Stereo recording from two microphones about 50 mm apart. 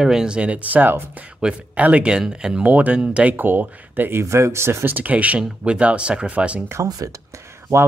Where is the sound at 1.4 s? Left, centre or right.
Centre.